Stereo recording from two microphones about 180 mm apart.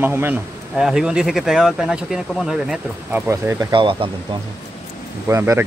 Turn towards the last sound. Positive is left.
turn(degrees=-15)  # may be behind; listen again after turning